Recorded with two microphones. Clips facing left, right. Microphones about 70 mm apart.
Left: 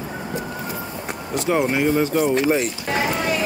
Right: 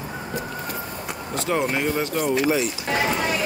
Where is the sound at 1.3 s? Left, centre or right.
Centre.